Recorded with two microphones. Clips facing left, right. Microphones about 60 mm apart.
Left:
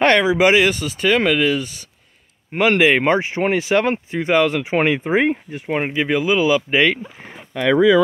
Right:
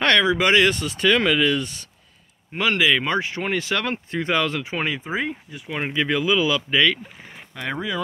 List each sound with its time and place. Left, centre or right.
0.0 s speech: centre
2.5 s speech: left
3.2 s speech: left
4.7 s speech: left
5.8 s speech: left
7.2 s speech: left